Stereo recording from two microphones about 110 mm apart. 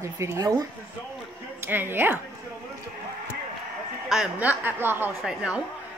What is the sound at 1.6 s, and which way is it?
Speech, 20° right (ahead or behind).